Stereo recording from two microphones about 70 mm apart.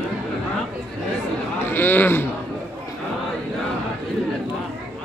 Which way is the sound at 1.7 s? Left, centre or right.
Left.